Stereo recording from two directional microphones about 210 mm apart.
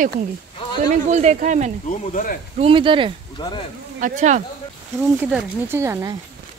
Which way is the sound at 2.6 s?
25° right (ahead or behind).